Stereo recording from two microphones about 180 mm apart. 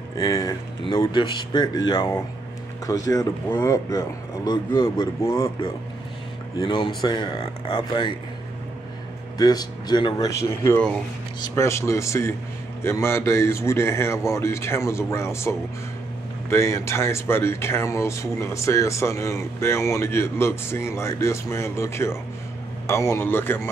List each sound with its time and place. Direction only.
0.2 s speech: 15° left (ahead or behind)
6.6 s speech: 25° left (ahead or behind)
9.4 s speech: 20° left (ahead or behind)